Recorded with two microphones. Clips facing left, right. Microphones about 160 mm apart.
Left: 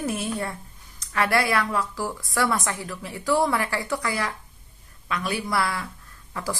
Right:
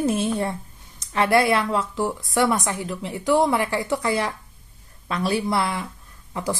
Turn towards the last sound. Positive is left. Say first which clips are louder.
# right 4 dB
turn(degrees=-20)  # may be behind; listen again after turning